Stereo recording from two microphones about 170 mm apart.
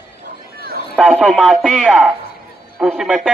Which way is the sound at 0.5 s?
60° right (ahead or behind).